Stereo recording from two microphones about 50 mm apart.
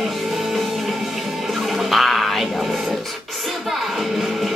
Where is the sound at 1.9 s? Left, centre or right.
Centre.